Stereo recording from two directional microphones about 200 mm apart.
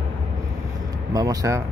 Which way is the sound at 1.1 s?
15° right (ahead or behind).